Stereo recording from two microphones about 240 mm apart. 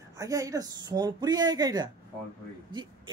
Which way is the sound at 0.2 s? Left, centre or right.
Centre.